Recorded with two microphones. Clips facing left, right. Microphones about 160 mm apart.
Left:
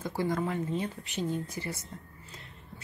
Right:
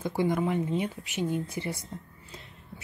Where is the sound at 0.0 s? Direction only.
15° right (ahead or behind).